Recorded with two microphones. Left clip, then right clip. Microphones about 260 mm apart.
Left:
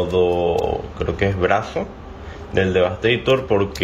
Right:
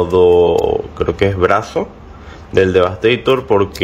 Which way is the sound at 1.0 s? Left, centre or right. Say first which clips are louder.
Right 5 dB; centre.